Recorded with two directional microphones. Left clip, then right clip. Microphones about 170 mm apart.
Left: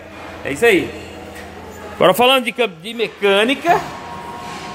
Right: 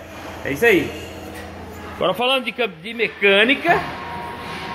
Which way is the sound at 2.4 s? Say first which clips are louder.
Left 4 dB; 30° left (ahead or behind).